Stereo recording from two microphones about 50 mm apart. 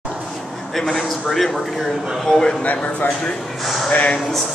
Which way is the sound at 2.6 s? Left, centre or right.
Left.